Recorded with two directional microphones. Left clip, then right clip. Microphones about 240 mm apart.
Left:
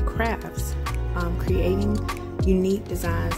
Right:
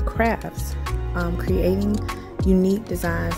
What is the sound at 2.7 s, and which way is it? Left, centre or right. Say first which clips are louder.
Speech: right 2 dB; centre.